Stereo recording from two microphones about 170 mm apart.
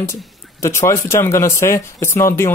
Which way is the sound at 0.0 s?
15° left (ahead or behind).